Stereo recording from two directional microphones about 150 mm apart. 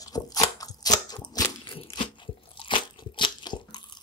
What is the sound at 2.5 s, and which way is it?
Crunch, 35° left (ahead or behind).